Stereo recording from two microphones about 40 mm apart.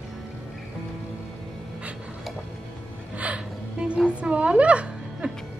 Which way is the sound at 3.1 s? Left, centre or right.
Right.